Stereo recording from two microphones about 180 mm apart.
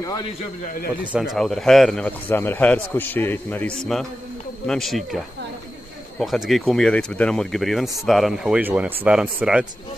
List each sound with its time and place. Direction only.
0.7 s speech: 55° left (ahead or behind)
1.1 s a man's voice: centre (ahead or behind)